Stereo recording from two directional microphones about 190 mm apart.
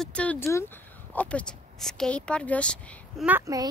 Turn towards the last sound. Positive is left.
turn(degrees=-15)  # may be behind; listen again after turning